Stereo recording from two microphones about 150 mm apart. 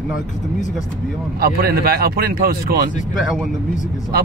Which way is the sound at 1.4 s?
85° right.